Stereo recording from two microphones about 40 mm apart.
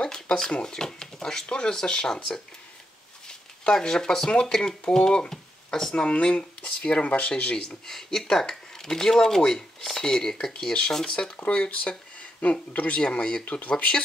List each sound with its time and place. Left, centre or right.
0.5 s speech: left
0.7 s speech: centre
3.7 s speech: centre
6.0 s speech: left
7.5 s speech: centre
11.4 s speech: left
12.4 s speech: left
13.6 s speech: left